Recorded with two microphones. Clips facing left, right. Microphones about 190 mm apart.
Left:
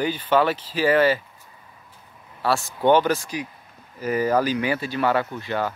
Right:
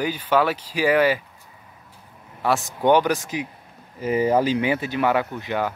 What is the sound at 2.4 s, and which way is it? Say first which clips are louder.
Speech: even; 15° right (ahead or behind).